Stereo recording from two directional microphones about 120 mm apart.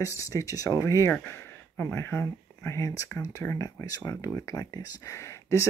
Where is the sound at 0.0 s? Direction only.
25° left (ahead or behind).